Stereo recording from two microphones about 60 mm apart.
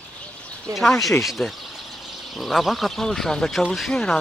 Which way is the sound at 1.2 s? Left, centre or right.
Centre.